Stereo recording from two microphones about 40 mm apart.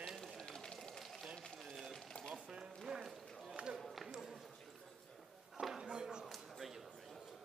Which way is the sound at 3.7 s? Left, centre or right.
Centre.